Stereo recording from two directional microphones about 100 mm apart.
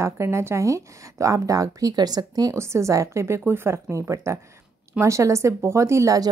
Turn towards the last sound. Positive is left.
turn(degrees=-30)  # may be behind; listen again after turning